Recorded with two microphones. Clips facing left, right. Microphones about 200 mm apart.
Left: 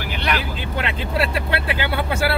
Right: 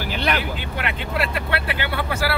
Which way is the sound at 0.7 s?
25° left (ahead or behind).